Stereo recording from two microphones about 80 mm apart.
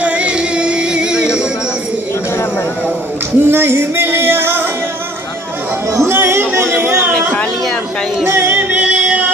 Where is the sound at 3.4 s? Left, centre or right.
Right.